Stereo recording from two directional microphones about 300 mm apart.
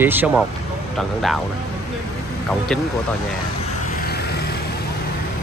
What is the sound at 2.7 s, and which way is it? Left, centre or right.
Speech, centre.